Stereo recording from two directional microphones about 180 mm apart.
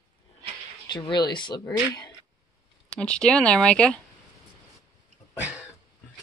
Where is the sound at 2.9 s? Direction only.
5° left (ahead or behind).